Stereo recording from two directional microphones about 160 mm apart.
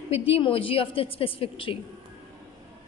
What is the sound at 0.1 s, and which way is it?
A woman's voice, 35° left (ahead or behind).